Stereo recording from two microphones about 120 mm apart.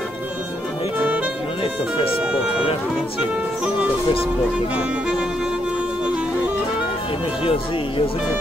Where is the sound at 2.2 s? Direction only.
10° right (ahead or behind).